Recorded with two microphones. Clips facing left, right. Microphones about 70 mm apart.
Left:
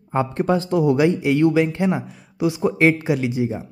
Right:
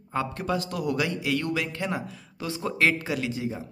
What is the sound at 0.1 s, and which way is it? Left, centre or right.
Speech, left.